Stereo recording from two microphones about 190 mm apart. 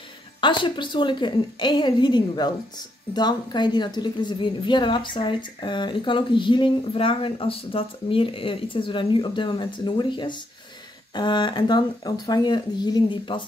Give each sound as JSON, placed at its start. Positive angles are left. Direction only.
{"t": 0.4, "sound": "a woman's voice", "side_deg": 25}